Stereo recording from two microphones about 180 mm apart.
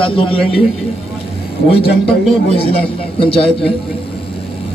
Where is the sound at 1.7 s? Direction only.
30° left (ahead or behind).